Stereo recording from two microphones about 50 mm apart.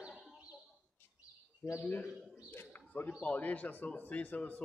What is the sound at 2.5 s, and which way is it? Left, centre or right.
Bird, left.